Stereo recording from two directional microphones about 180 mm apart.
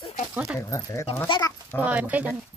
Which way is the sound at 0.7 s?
15° left (ahead or behind).